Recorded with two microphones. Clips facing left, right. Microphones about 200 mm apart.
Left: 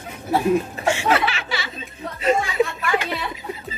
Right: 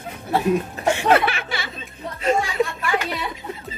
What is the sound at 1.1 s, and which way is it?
Speech, 55° right (ahead or behind).